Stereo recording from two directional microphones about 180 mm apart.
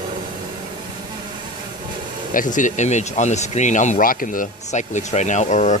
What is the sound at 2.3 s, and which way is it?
Speech, 45° left (ahead or behind).